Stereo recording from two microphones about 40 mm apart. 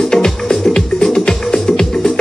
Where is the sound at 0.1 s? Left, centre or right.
Centre.